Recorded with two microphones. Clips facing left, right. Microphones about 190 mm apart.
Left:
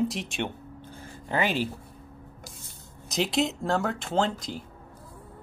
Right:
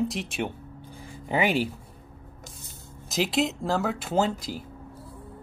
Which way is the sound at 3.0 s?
Centre (ahead or behind).